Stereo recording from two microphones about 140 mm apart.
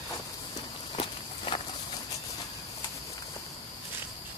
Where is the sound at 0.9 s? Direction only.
35° left (ahead or behind).